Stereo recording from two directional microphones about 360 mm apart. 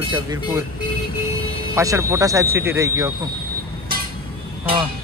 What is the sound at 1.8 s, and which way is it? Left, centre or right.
Speech, centre.